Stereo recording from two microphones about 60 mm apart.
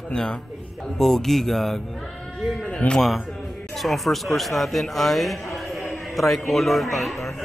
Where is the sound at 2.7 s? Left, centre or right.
Centre.